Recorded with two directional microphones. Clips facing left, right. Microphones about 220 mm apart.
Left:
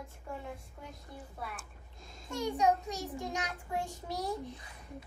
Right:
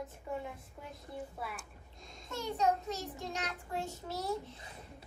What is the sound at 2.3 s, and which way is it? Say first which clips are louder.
A child's voice: left 3 dB; 15° left (ahead or behind).